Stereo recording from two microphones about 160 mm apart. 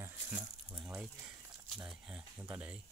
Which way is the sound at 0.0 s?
15° right (ahead or behind).